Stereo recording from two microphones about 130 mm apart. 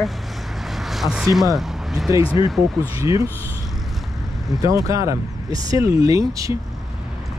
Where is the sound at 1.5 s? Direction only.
Centre (ahead or behind).